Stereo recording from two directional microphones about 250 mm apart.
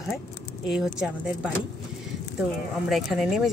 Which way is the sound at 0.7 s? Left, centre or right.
Centre.